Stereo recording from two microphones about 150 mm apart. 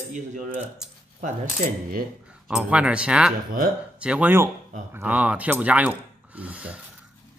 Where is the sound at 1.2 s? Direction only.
65° right (ahead or behind).